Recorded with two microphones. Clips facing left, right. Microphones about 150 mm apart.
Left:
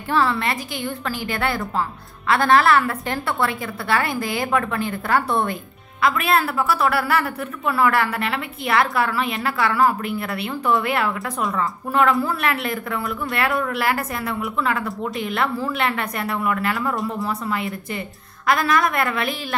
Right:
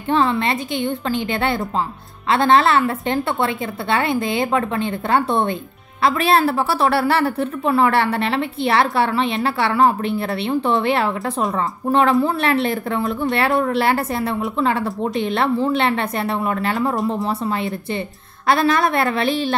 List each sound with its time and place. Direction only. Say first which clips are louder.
0.1 s a woman's voice: right 3 dB; 20° right (ahead or behind)